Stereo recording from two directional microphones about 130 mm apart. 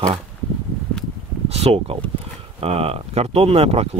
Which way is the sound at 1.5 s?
50° right (ahead or behind).